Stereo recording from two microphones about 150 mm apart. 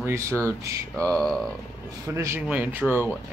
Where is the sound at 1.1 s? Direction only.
5° left (ahead or behind).